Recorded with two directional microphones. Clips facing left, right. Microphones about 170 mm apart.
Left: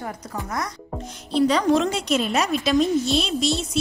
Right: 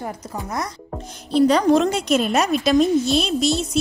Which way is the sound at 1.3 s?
45° right (ahead or behind).